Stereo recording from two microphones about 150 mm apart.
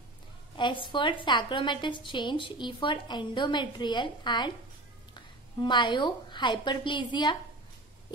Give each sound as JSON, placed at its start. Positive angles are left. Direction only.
{"t": 0.6, "sound": "a woman's voice", "side_deg": 30}